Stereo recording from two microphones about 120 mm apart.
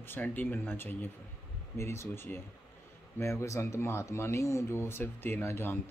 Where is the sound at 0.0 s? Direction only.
15° left (ahead or behind).